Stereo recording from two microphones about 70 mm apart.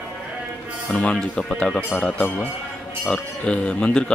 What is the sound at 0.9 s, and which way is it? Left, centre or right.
Speech, centre.